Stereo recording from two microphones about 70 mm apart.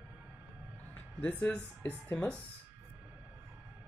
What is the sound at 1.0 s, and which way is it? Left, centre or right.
Speech, left.